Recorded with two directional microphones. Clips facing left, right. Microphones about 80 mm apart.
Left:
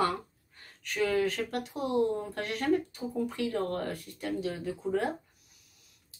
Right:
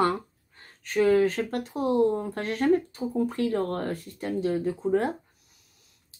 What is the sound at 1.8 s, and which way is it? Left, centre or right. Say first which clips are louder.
Speech: right 5 dB; right.